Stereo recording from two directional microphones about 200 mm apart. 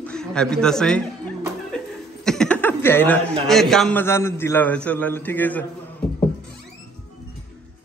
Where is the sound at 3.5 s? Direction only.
Centre (ahead or behind).